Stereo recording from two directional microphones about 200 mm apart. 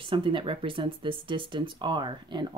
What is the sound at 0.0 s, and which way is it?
Speech, 25° right (ahead or behind).